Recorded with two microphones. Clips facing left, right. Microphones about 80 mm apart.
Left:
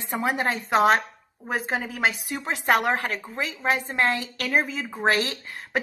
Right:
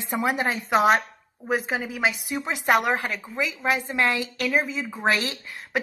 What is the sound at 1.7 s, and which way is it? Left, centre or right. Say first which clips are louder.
Speech: even; left.